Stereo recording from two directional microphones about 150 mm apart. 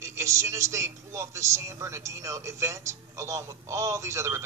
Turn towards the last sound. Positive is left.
turn(degrees=-20)  # may be behind; listen again after turning